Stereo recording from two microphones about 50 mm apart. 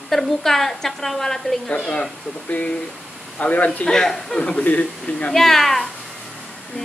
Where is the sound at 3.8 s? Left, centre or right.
Centre.